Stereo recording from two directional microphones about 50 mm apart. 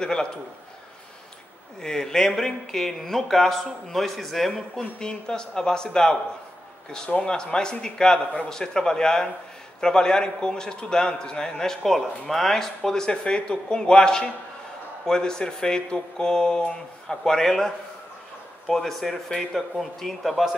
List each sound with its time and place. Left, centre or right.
0.0 s a man's voice: centre
1.8 s speech: centre
4.9 s a man's voice: centre